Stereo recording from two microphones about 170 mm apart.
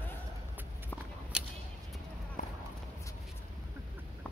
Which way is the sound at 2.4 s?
45° left (ahead or behind).